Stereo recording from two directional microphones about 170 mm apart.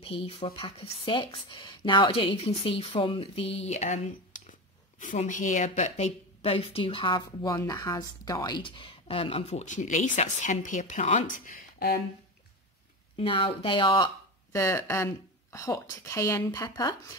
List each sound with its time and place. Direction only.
0.0 s speech: 35° left (ahead or behind); by 12.0 s 55° left (ahead or behind)
13.1 s speech: 30° left (ahead or behind)
14.6 s a woman's voice: 15° left (ahead or behind)